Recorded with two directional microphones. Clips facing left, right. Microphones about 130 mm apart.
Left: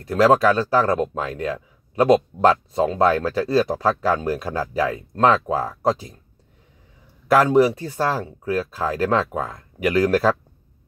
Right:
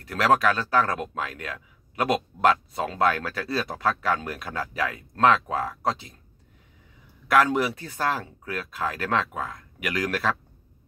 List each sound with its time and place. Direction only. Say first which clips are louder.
0.1 s speech: left 6 dB; 30° left (ahead or behind)
7.2 s speech: left 6 dB; 30° left (ahead or behind)